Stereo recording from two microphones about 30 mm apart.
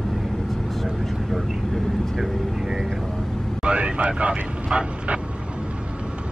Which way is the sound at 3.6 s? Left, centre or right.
Right.